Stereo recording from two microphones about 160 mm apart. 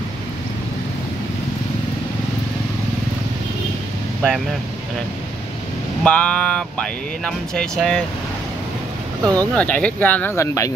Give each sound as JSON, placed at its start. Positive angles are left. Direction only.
{"t": 6.0, "sound": "speech", "side_deg": 5}
{"t": 9.2, "sound": "speech", "side_deg": -25}
{"t": 9.6, "sound": "speech", "side_deg": 10}